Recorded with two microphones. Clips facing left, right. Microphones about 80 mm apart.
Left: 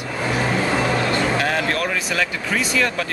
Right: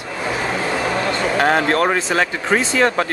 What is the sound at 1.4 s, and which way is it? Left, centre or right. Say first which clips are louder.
Speech: right 6 dB; right.